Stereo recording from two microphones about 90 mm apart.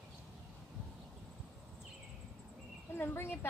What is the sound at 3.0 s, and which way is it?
Speech, 25° left (ahead or behind).